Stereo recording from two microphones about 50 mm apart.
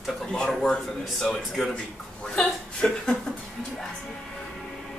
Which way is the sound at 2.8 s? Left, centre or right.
Centre.